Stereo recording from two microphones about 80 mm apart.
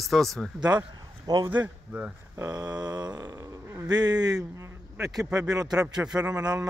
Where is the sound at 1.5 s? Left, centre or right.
Centre.